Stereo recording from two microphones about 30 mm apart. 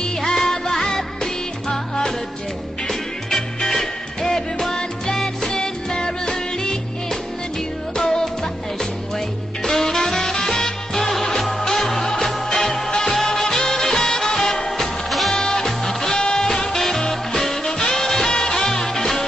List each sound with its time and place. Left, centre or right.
0.2 s music: centre
5.5 s music: left
14.8 s music: centre